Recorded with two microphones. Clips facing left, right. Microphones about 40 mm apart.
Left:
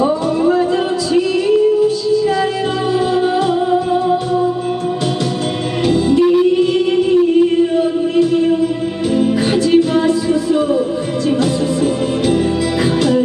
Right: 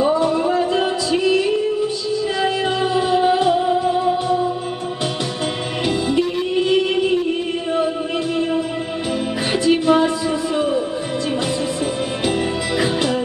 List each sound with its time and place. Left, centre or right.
0.0 s a sound: centre
2.9 s music: centre
5.9 s music: centre
9.5 s music: centre